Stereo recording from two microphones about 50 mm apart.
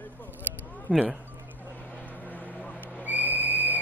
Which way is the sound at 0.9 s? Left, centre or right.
Right.